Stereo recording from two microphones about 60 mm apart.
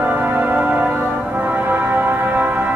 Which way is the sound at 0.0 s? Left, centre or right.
Right.